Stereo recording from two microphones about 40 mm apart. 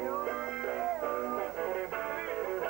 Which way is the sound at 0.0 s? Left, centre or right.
Centre.